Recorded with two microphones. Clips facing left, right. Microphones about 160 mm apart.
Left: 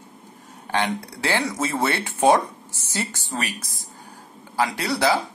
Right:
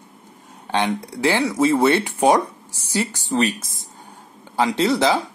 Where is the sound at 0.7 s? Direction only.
15° right (ahead or behind).